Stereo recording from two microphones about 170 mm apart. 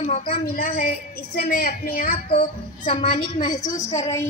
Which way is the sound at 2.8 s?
30° left (ahead or behind).